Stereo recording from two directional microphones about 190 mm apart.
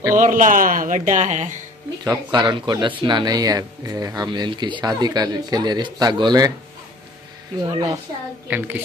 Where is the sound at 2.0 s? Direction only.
20° right (ahead or behind).